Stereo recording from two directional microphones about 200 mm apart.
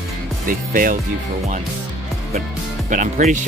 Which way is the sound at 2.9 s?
40° right (ahead or behind).